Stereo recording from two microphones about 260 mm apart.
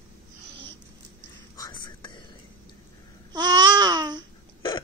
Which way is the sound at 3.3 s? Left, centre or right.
Centre.